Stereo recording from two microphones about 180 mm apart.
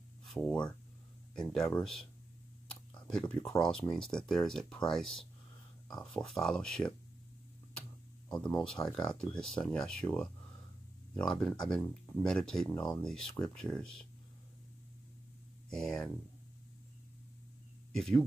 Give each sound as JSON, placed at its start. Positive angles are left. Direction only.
{"t": 0.2, "sound": "speech", "side_deg": 5}
{"t": 8.4, "sound": "speech", "side_deg": 5}
{"t": 15.7, "sound": "speech", "side_deg": 5}
{"t": 17.9, "sound": "speech", "side_deg": 5}